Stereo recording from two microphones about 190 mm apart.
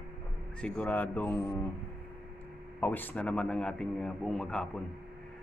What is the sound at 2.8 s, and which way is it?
A man's voice, 10° left (ahead or behind).